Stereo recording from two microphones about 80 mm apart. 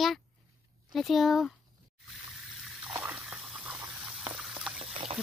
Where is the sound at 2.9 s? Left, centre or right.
Right.